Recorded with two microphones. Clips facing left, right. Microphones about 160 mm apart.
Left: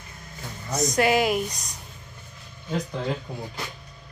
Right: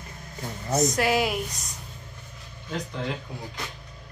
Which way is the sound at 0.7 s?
5° right (ahead or behind).